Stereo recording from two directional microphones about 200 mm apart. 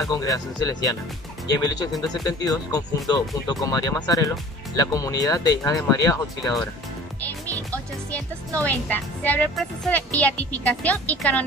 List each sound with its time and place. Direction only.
0.0 s speech: 15° left (ahead or behind)
7.2 s music: 10° left (ahead or behind)
8.6 s speech: 10° left (ahead or behind)